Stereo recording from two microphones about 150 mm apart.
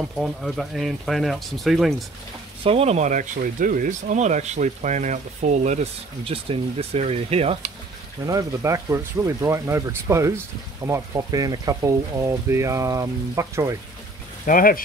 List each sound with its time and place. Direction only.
0.2 s speech: centre (ahead or behind)
2.6 s speech: 40° right (ahead or behind)
8.3 s speech: 20° right (ahead or behind)
14.4 s speech: 70° left (ahead or behind)